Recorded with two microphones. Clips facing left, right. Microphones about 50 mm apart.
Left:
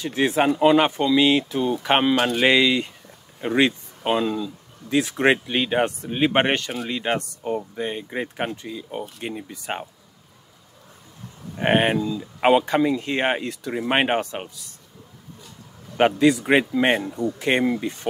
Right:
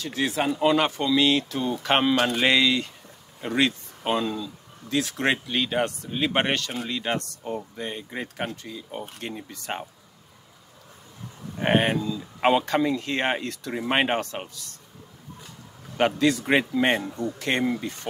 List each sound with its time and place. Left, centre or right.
0.0 s speech: left
9.2 s speech: centre
11.5 s speech: left
12.0 s speech: centre
16.2 s speech: centre
17.3 s speech: centre